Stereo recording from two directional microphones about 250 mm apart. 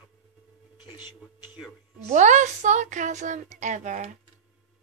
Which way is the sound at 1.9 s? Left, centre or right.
Right.